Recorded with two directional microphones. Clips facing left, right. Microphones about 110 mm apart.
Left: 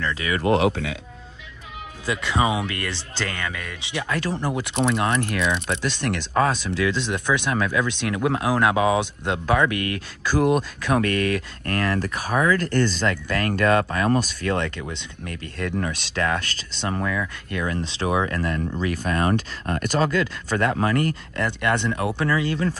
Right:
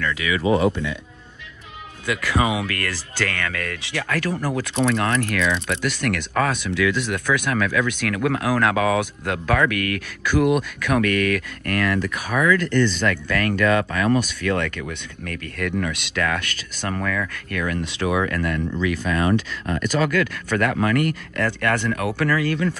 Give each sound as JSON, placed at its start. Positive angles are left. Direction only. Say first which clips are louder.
{"t": 0.0, "sound": "speech", "louder": "right 2 dB", "side_deg": 35}
{"t": 0.4, "sound": "speech", "louder": "even", "side_deg": 70}
{"t": 2.0, "sound": "speech", "louder": "right 1 dB", "side_deg": 25}
{"t": 13.0, "sound": "speech", "louder": "right 2 dB", "side_deg": 30}
{"t": 20.1, "sound": "speech", "louder": "right 2 dB", "side_deg": 25}